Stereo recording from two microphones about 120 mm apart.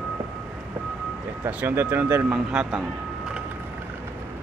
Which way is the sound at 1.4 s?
20° right (ahead or behind).